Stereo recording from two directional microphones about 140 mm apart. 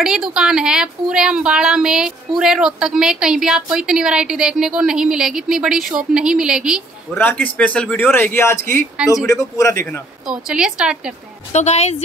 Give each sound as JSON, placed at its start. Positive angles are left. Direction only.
{"t": 0.0, "sound": "a woman's voice", "side_deg": -5}
{"t": 7.2, "sound": "a man's voice", "side_deg": 10}
{"t": 10.2, "sound": "a woman's voice", "side_deg": -5}
{"t": 11.5, "sound": "a woman's voice", "side_deg": 50}